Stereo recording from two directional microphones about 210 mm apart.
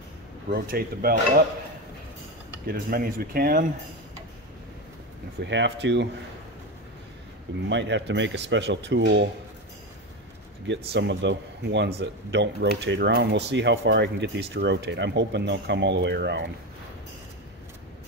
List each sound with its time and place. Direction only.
0.5 s speech: 45° right (ahead or behind)
2.6 s speech: 45° right (ahead or behind)
5.4 s speech: 55° right (ahead or behind)
7.7 s speech: 60° right (ahead or behind)
10.7 s speech: 55° right (ahead or behind)